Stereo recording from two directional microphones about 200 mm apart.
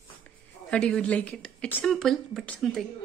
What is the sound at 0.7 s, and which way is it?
Speech, 5° left (ahead or behind).